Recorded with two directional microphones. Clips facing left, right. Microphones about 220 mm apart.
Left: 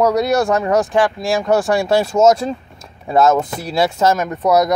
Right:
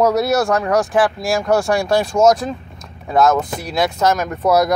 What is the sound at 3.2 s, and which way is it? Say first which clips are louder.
Speech: left 1 dB; 25° left (ahead or behind).